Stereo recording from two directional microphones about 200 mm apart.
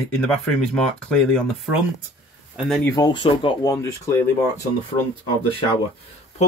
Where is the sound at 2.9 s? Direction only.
20° left (ahead or behind).